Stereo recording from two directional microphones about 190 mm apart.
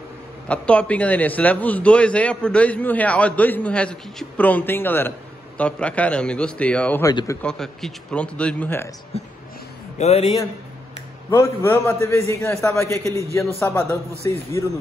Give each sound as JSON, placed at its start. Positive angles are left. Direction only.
{"t": 0.5, "sound": "a man's voice", "side_deg": 5}
{"t": 7.4, "sound": "speech", "side_deg": 5}
{"t": 9.1, "sound": "a man's voice", "side_deg": 35}
{"t": 11.2, "sound": "a man's voice", "side_deg": 15}
{"t": 12.6, "sound": "a man's voice", "side_deg": 15}